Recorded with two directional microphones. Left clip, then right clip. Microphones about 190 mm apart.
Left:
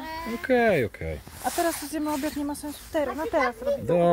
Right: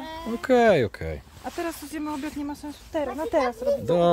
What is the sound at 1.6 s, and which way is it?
Speech, 30° left (ahead or behind).